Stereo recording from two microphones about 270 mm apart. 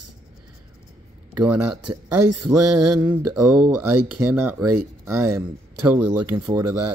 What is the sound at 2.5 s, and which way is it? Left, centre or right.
Speech, right.